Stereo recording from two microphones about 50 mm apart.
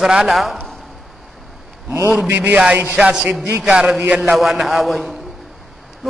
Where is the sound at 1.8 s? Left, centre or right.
Right.